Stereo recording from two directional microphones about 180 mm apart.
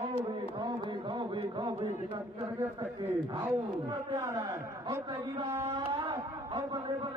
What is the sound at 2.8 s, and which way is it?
A man's voice, 10° right (ahead or behind).